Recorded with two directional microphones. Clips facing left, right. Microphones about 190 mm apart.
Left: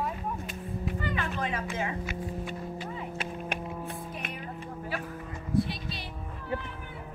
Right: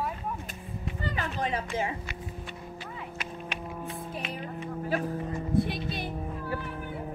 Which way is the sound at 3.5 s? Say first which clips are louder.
Left 3 dB; 50° left (ahead or behind).